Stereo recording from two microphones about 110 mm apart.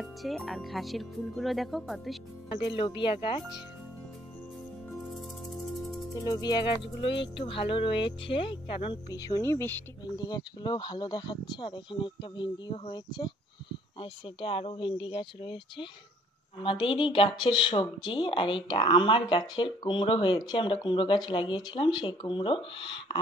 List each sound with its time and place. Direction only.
0.0 s speech: centre (ahead or behind)
2.5 s speech: 50° left (ahead or behind)
5.1 s music: centre (ahead or behind)
6.1 s speech: 35° left (ahead or behind); by 9.8 s 20° left (ahead or behind)
10.0 s speech: 40° left (ahead or behind)